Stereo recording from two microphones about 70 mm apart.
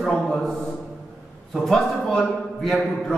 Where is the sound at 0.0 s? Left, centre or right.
Centre.